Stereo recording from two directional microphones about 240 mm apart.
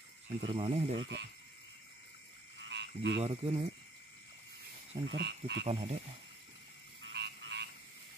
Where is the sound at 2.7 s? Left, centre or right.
Right.